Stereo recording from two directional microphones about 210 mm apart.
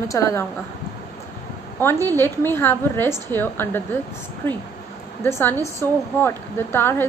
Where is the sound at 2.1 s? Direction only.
10° left (ahead or behind).